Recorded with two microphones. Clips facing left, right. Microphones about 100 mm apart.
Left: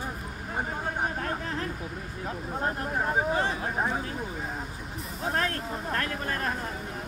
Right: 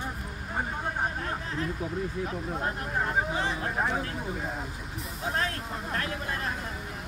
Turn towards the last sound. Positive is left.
turn(degrees=55)  # may be behind; listen again after turning